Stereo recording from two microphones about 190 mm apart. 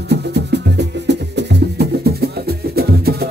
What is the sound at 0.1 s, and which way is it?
Music, 60° right (ahead or behind).